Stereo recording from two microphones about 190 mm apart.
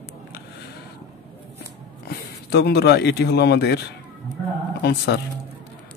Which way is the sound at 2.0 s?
55° left (ahead or behind).